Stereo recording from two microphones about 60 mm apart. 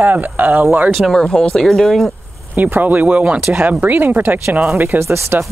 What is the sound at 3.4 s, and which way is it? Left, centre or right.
Speech, right.